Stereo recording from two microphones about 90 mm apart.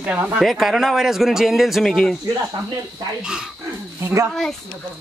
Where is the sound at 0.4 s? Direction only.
Centre (ahead or behind).